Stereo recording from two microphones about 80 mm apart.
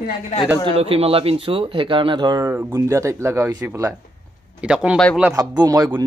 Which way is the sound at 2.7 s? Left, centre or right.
Right.